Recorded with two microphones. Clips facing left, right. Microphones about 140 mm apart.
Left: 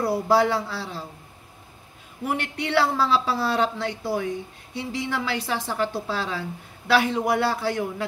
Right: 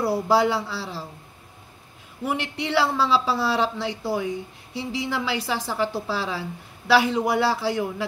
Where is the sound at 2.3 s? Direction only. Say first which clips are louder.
Left 1 dB; 50° left (ahead or behind).